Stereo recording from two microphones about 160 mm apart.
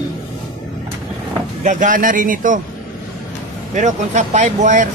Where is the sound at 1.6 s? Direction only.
50° right (ahead or behind).